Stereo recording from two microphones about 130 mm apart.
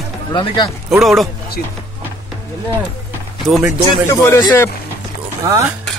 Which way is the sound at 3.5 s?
Centre (ahead or behind).